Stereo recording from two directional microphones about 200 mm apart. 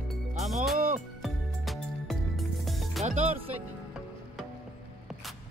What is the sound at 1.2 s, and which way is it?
Music, centre (ahead or behind).